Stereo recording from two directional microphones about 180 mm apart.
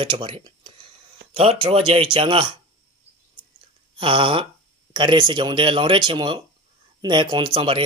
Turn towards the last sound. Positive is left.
turn(degrees=-25)  # may be behind; listen again after turning